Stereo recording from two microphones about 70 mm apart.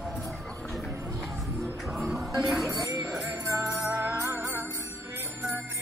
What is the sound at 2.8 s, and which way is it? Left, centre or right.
Music, right.